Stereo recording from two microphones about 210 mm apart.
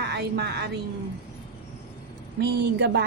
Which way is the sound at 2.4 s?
55° right (ahead or behind).